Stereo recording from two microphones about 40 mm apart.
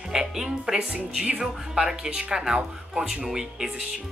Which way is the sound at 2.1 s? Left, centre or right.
Right.